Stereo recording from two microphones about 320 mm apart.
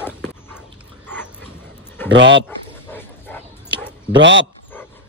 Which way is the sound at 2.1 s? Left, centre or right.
Right.